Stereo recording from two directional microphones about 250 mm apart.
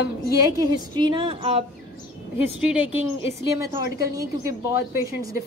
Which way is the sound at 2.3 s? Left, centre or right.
Centre.